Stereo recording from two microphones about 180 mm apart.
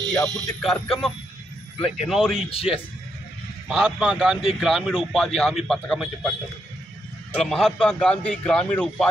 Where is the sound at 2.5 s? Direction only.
30° left (ahead or behind).